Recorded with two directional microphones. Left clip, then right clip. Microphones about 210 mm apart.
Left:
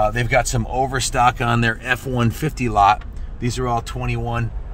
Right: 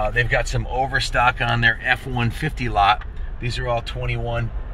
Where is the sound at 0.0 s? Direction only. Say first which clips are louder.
Left 3 dB; 30° left (ahead or behind).